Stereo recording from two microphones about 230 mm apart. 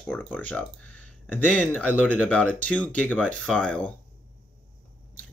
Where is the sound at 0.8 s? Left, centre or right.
Left.